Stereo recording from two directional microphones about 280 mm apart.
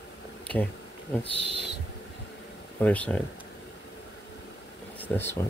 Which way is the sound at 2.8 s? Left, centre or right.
Centre.